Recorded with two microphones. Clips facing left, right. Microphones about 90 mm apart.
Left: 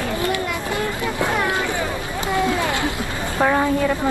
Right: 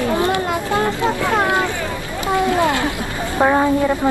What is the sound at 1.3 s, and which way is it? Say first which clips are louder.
Vehicle: right 5 dB; 25° right (ahead or behind).